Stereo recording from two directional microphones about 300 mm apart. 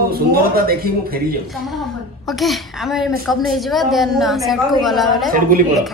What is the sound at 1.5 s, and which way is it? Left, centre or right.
A woman's voice, centre.